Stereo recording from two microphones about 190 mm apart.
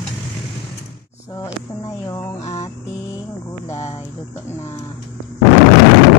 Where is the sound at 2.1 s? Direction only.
15° left (ahead or behind).